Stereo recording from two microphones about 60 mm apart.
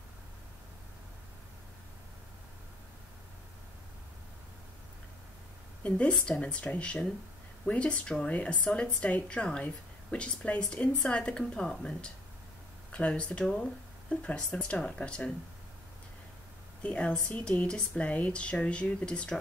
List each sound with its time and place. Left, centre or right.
5.9 s a woman's voice: centre
16.8 s a woman's voice: centre